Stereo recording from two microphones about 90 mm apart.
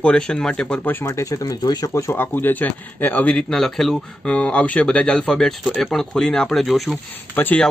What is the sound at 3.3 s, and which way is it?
Speech, 5° left (ahead or behind).